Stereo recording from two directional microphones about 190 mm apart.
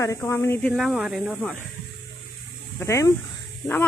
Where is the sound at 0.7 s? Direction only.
Centre (ahead or behind).